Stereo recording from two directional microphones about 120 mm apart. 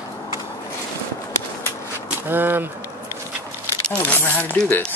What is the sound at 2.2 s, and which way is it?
Speech, 15° right (ahead or behind).